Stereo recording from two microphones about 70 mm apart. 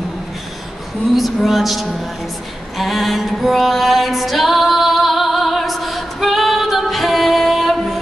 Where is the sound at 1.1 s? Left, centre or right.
Centre.